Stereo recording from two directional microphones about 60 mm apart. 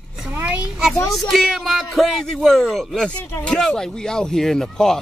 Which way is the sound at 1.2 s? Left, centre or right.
Centre.